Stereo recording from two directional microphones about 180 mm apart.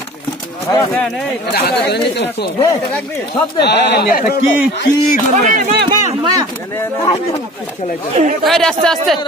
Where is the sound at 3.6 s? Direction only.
65° left (ahead or behind).